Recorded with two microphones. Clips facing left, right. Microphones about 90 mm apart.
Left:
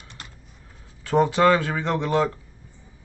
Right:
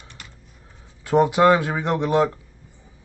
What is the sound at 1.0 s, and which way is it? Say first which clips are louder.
Speech: right 2 dB; 15° right (ahead or behind).